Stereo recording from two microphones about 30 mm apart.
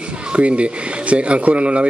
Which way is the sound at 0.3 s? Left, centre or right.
Right.